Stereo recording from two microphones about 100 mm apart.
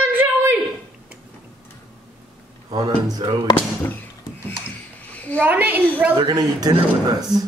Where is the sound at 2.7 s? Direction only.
40° right (ahead or behind).